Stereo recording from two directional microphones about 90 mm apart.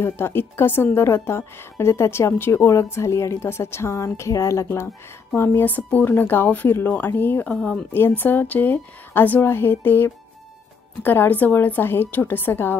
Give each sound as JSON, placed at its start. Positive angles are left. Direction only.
{"t": 0.0, "sound": "a woman's voice", "side_deg": 25}